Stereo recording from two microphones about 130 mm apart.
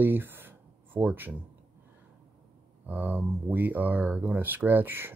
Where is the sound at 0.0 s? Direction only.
15° right (ahead or behind).